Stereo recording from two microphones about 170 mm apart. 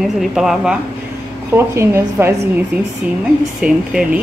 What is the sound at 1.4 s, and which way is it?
A woman's voice, 15° right (ahead or behind).